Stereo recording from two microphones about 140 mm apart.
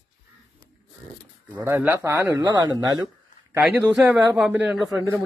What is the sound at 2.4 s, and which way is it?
Speech, 30° right (ahead or behind).